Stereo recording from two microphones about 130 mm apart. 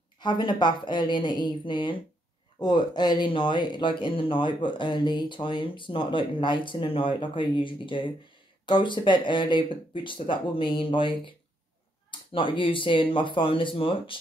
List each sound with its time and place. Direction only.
0.2 s speech: 35° left (ahead or behind)